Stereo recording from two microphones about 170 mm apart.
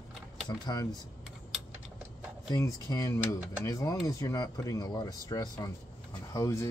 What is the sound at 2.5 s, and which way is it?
Speech, 20° left (ahead or behind).